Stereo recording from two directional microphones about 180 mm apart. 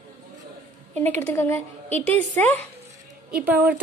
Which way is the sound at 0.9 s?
10° left (ahead or behind).